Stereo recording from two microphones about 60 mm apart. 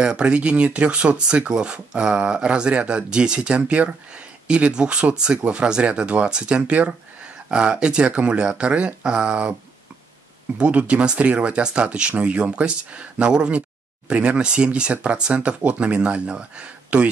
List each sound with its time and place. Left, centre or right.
0.0 s speech: centre
10.6 s speech: right